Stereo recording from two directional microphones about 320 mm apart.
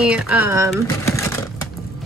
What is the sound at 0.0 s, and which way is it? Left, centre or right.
Speech, centre.